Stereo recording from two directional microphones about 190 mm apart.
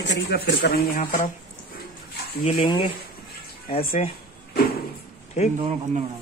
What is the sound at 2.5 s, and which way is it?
Speech, 25° left (ahead or behind).